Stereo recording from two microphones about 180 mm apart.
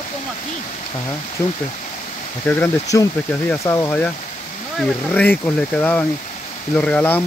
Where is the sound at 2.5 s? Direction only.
15° left (ahead or behind).